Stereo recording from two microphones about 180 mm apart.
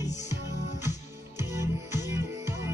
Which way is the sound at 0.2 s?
15° right (ahead or behind).